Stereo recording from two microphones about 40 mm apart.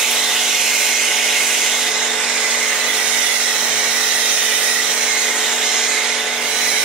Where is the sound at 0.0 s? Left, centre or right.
Centre.